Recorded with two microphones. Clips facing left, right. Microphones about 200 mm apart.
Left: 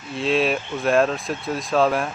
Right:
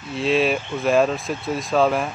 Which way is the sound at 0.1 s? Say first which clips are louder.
Right 1 dB; centre (ahead or behind).